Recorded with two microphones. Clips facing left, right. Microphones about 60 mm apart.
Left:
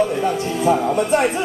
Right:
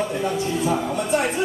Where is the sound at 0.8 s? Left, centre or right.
Left.